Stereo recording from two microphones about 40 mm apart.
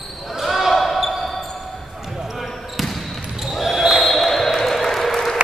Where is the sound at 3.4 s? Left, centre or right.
Centre.